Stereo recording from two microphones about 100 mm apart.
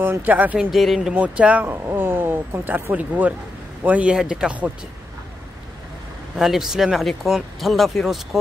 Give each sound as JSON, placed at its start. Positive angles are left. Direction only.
{"t": 0.0, "sound": "speech", "side_deg": -20}
{"t": 0.7, "sound": "speech", "side_deg": 0}
{"t": 6.3, "sound": "speech", "side_deg": -5}